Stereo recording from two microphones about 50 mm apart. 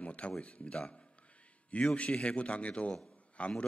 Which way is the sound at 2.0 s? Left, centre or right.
Left.